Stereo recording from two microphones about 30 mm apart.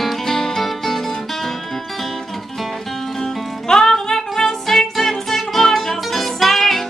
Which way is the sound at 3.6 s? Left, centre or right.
Centre.